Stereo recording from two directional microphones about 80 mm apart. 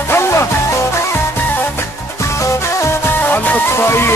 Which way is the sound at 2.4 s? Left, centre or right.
Left.